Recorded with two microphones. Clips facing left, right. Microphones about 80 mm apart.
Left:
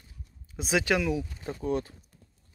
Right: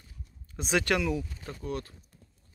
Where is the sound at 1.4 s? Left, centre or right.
Left.